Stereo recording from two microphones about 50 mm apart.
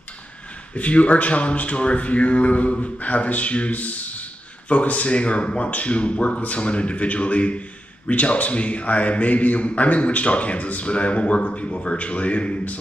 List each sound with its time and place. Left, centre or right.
0.7 s speech: left